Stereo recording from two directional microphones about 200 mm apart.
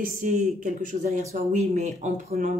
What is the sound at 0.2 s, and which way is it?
Speech, 40° right (ahead or behind).